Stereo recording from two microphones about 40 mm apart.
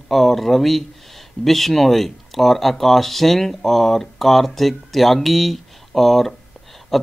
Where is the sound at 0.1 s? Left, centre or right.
Centre.